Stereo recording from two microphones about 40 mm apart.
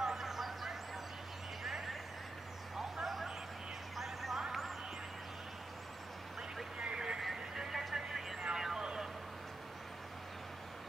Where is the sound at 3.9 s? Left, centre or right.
Centre.